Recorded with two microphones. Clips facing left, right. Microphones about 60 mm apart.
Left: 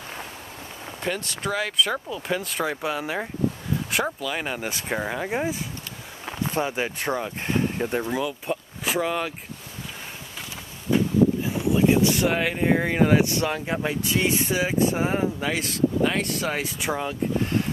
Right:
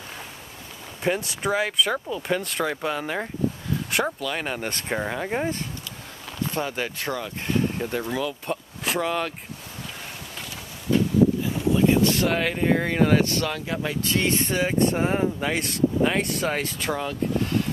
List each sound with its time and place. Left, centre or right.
1.0 s speech: centre
6.4 s speech: centre
8.0 s speech: centre
11.4 s speech: centre
14.0 s speech: centre